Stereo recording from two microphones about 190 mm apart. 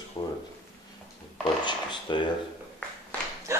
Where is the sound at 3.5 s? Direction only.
15° right (ahead or behind).